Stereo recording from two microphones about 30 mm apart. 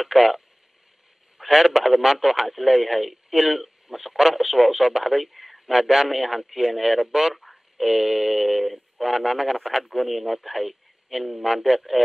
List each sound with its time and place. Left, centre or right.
0.0 s speech: centre
1.4 s radio: centre
1.9 s speech: centre
5.3 s a sound: centre
5.7 s speech: centre
7.3 s a sound: centre
7.8 s speech: centre
9.1 s speech: centre